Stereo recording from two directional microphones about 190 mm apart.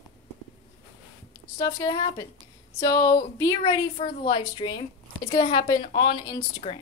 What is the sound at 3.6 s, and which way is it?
Speech, 30° left (ahead or behind).